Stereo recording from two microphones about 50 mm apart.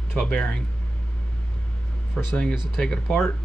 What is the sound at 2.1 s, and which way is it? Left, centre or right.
Speech, left.